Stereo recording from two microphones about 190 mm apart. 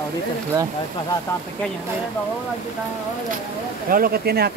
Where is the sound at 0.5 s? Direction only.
20° right (ahead or behind).